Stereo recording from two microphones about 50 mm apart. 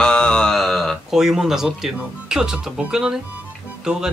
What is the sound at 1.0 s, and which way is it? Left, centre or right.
Speech, centre.